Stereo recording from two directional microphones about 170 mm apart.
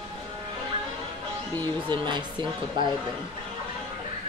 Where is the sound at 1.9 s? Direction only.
25° right (ahead or behind).